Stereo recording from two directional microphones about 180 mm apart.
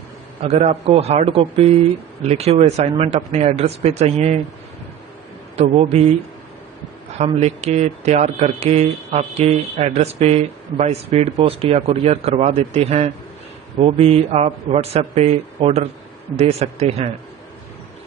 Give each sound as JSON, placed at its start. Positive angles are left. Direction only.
{"t": 0.4, "sound": "speech", "side_deg": -35}
{"t": 5.6, "sound": "speech", "side_deg": -35}
{"t": 7.2, "sound": "speech", "side_deg": -35}